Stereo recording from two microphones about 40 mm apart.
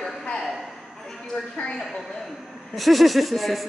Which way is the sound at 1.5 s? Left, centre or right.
Left.